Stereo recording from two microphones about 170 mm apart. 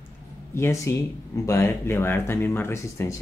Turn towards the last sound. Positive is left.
turn(degrees=15)  # may be behind; listen again after turning